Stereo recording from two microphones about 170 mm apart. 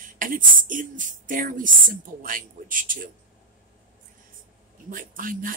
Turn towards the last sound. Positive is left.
turn(degrees=-55)  # may be behind; listen again after turning